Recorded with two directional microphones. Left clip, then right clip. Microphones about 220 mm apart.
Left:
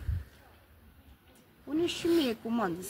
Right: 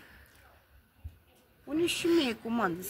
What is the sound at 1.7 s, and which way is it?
Speech, 45° right (ahead or behind).